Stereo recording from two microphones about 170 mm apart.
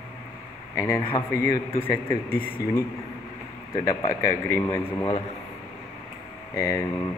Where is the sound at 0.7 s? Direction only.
15° left (ahead or behind).